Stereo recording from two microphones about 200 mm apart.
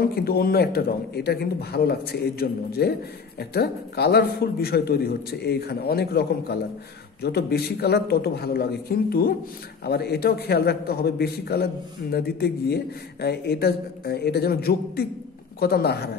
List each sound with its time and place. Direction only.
0.0 s a man's voice: 50° left (ahead or behind)